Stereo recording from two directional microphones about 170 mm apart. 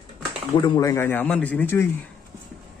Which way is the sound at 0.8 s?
15° left (ahead or behind).